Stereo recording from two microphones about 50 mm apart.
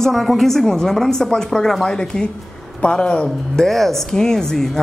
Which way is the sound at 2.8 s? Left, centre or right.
Left.